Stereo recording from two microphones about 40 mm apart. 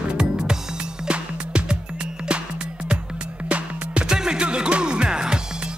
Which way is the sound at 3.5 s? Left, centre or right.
Right.